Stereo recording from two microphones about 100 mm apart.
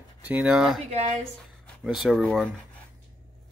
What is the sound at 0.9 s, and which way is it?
Speech, 90° right.